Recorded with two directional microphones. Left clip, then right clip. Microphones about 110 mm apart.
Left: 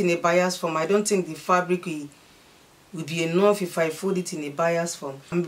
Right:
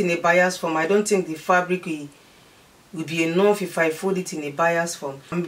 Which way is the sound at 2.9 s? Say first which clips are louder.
Right 3 dB; 20° left (ahead or behind).